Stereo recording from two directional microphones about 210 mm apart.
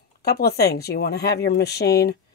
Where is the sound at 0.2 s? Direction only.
50° left (ahead or behind).